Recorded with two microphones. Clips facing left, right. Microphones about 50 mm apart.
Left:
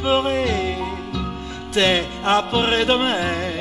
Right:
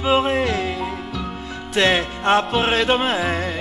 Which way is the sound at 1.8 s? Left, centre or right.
Centre.